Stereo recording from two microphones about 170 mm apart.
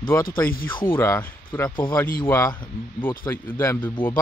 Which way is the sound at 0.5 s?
55° left (ahead or behind).